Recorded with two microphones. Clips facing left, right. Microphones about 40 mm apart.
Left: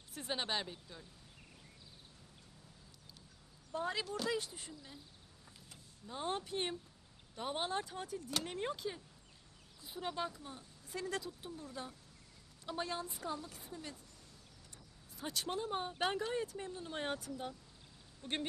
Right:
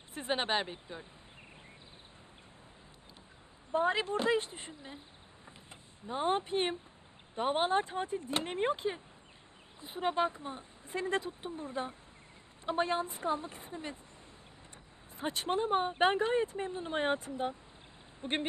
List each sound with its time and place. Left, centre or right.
0.1 s speech: right
3.7 s speech: right
15.1 s speech: right